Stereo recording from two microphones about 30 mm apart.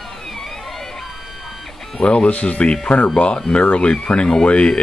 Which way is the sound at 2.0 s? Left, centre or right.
Left.